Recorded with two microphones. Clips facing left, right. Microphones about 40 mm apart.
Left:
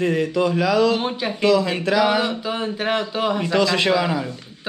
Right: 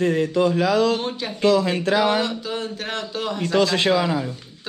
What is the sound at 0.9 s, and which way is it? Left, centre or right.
Speech, centre.